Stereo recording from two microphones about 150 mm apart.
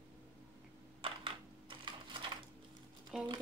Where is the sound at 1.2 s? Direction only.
35° right (ahead or behind).